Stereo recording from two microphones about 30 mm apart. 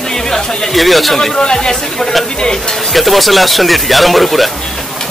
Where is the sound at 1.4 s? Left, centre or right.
Left.